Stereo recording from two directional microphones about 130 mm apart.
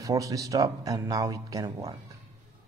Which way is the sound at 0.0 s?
25° right (ahead or behind).